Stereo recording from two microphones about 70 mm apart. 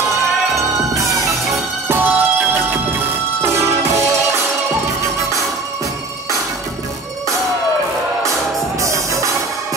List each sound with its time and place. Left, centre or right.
2.0 s music: right
8.8 s music: right